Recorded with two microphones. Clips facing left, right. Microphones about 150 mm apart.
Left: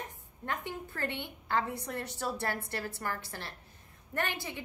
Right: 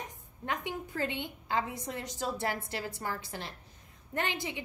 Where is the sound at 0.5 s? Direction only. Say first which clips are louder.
Right 2 dB; 15° right (ahead or behind).